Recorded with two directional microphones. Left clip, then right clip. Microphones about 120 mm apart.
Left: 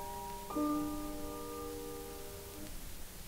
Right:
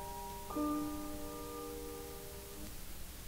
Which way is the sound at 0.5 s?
25° left (ahead or behind).